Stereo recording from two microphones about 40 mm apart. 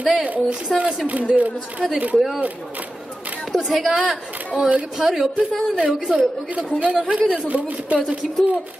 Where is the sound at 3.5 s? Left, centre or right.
Centre.